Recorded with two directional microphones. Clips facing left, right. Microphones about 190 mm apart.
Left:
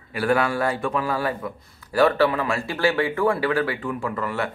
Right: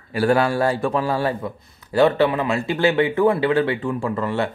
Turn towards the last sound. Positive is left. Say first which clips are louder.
# right 4 dB
turn(degrees=-25)  # may be behind; listen again after turning